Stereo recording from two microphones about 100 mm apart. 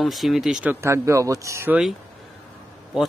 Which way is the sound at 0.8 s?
30° right (ahead or behind).